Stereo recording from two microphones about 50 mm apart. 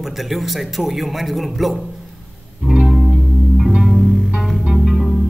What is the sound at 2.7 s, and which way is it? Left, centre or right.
Music, centre.